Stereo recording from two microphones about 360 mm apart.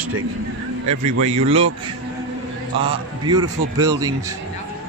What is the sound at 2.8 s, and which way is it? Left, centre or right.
A man's voice, centre.